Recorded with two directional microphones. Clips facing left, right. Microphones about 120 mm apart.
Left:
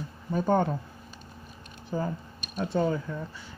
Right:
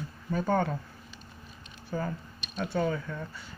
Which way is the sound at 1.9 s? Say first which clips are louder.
Left 2 dB; 20° left (ahead or behind).